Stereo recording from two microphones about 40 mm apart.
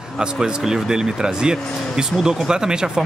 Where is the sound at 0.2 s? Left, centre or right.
Centre.